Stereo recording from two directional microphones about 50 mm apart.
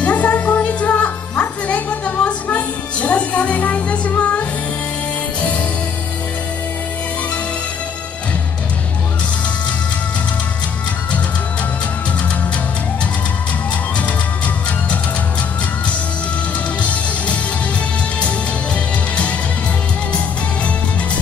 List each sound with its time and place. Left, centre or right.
0.0 s music: left
16.8 s music: left